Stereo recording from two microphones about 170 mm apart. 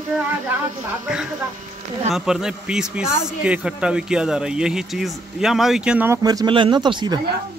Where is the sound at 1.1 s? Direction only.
5° right (ahead or behind).